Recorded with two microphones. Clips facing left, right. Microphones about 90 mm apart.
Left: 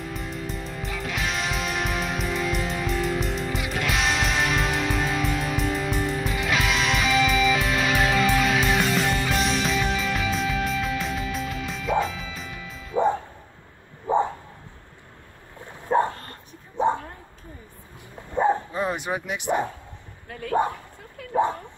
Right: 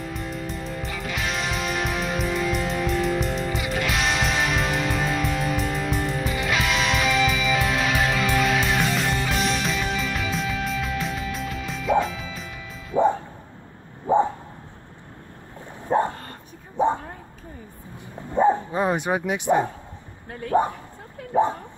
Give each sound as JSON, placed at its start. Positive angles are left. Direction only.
{"t": 0.0, "sound": "music", "side_deg": 0}
{"t": 18.7, "sound": "speech", "side_deg": -25}
{"t": 20.2, "sound": "dog", "side_deg": -30}